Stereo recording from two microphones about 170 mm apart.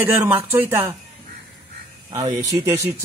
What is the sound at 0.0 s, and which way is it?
Speech, 10° right (ahead or behind).